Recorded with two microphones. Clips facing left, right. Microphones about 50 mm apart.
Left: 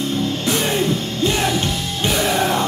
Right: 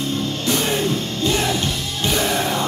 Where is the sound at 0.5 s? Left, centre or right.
Centre.